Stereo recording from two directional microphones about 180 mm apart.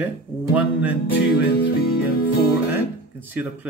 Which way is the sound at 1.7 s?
60° left (ahead or behind).